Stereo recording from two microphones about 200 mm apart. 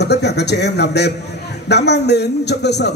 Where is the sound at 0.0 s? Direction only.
55° left (ahead or behind).